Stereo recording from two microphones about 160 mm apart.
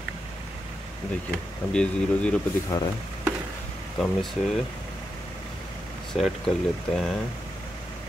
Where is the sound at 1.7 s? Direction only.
5° left (ahead or behind).